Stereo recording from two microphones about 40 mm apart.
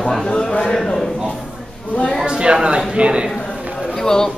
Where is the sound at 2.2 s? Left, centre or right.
Right.